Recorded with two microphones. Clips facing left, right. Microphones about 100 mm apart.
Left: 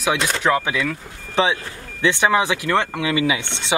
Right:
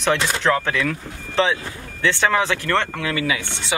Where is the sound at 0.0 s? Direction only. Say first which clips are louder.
Even; 10° left (ahead or behind).